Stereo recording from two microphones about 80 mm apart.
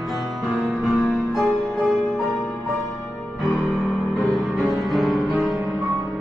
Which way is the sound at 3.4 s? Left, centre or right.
Left.